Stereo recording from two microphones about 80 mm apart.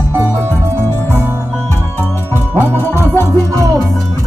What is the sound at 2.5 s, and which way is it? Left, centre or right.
Music, right.